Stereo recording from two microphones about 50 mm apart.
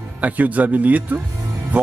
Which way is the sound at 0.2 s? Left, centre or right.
Right.